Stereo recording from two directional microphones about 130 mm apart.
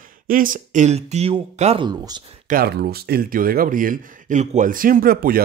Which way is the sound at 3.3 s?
90° right.